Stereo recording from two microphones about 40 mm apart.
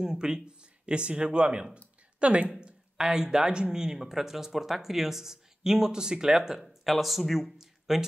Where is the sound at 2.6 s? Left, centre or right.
Centre.